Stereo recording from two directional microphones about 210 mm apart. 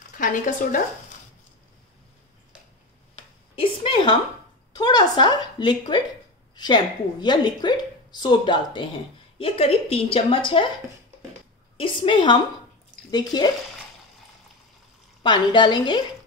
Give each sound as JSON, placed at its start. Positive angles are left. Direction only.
{"t": 0.2, "sound": "speech", "side_deg": 40}
{"t": 3.5, "sound": "a sound", "side_deg": 25}
{"t": 4.7, "sound": "a woman's voice", "side_deg": 20}
{"t": 11.7, "sound": "a woman's voice", "side_deg": 25}
{"t": 15.2, "sound": "a woman's voice", "side_deg": 20}